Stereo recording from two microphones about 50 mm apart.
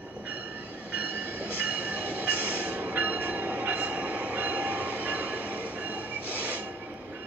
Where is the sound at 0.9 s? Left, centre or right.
Right.